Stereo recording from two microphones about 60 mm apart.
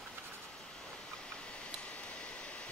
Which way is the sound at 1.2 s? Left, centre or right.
Centre.